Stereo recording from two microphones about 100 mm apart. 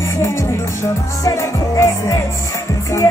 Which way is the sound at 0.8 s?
30° left (ahead or behind).